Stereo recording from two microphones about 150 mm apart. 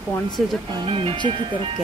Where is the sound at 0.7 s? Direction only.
30° right (ahead or behind).